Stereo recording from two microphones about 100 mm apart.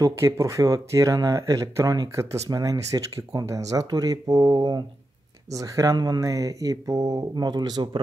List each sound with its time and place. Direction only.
0.0 s speech: 30° right (ahead or behind)